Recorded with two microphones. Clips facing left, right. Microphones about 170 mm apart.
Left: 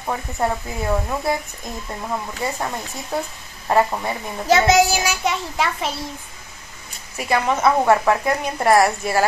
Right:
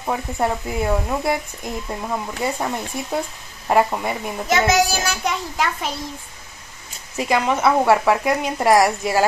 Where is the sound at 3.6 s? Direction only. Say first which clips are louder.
Right 1 dB; 15° right (ahead or behind).